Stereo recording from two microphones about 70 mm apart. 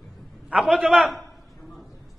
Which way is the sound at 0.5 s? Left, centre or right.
Centre.